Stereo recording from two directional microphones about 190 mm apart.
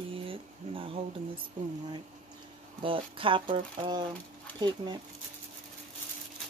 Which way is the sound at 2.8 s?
25° right (ahead or behind).